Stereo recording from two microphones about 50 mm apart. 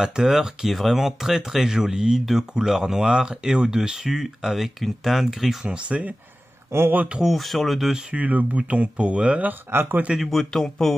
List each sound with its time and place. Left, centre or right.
0.0 s speech: centre
5.7 s speech: right
6.7 s speech: right
7.3 s speech: centre
8.1 s speech: right
9.5 s speech: right
10.1 s speech: centre